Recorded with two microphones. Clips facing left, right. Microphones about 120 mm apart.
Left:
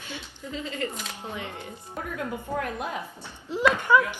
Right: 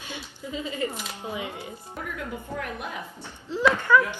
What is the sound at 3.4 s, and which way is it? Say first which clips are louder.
Speech: even; 15° left (ahead or behind).